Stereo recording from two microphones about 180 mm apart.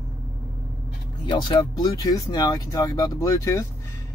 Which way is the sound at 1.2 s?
25° left (ahead or behind).